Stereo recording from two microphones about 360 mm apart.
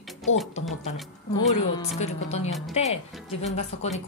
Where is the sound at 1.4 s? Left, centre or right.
Centre.